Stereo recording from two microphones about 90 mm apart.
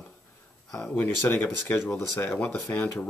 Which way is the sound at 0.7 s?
15° left (ahead or behind).